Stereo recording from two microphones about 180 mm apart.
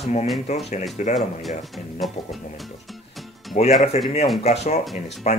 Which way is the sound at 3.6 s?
45° left (ahead or behind).